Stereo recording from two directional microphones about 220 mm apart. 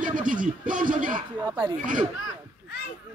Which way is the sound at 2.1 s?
70° left (ahead or behind).